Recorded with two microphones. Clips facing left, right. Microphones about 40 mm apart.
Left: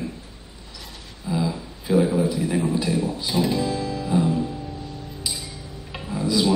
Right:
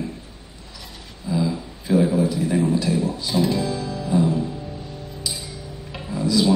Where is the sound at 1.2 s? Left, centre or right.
Centre.